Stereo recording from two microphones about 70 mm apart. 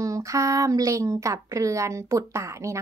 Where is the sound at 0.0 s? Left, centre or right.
Right.